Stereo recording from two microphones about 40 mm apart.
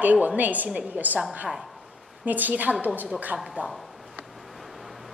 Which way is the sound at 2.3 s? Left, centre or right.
Right.